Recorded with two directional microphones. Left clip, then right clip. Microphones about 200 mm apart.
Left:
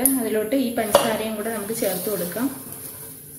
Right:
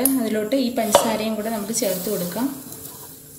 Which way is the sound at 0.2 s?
45° right (ahead or behind).